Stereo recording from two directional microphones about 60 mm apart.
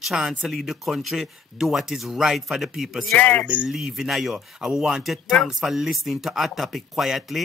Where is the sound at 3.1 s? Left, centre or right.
Left.